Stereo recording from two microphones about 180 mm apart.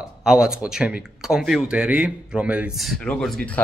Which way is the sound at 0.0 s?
5° right (ahead or behind).